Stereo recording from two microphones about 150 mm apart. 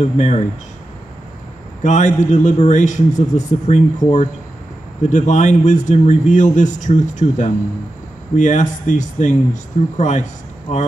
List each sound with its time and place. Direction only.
0.0 s a man's voice: 50° left (ahead or behind)
1.8 s a man's voice: 50° left (ahead or behind)
5.1 s a man's voice: 55° left (ahead or behind)